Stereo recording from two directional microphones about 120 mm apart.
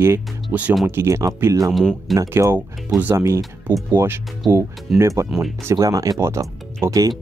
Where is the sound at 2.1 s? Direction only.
25° right (ahead or behind).